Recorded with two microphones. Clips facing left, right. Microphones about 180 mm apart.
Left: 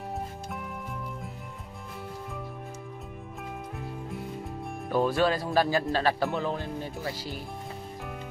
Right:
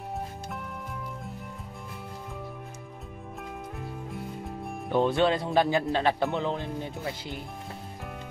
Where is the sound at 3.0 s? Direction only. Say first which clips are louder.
Even; centre (ahead or behind).